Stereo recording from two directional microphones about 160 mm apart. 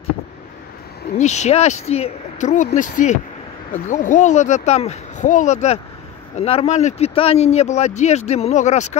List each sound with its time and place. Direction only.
1.1 s speech: 45° left (ahead or behind)